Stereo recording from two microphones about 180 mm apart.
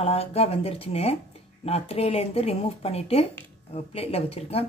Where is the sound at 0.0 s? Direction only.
35° left (ahead or behind).